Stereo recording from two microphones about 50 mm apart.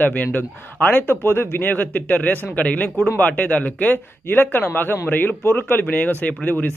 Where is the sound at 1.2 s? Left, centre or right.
Left.